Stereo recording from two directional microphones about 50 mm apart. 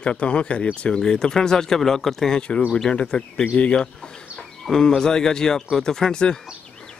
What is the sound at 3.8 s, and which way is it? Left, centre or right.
Chicken, centre.